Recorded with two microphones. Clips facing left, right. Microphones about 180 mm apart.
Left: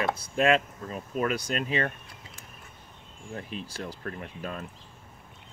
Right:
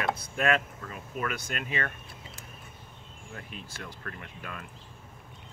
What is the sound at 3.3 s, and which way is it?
Speech, 30° left (ahead or behind).